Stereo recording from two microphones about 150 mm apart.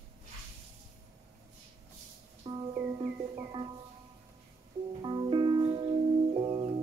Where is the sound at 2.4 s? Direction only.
35° right (ahead or behind).